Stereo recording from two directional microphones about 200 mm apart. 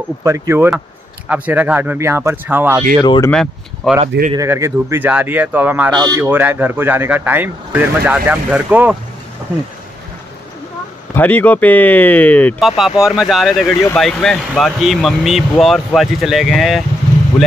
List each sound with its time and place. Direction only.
0.2 s speech: 15° right (ahead or behind)
3.0 s speech: 25° left (ahead or behind)
3.3 s speech: 5° left (ahead or behind)
4.3 s speech: 15° right (ahead or behind)
11.1 s speech: 10° left (ahead or behind)